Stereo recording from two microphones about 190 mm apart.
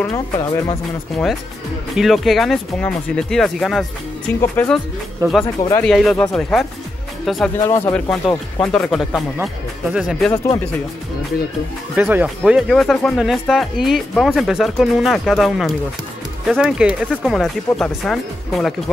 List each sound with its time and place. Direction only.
0.0 s speech: 20° left (ahead or behind)
1.1 s speech: centre (ahead or behind)
5.9 s speech: centre (ahead or behind)
7.6 s speech: 15° left (ahead or behind)
11.9 s speech: 10° right (ahead or behind)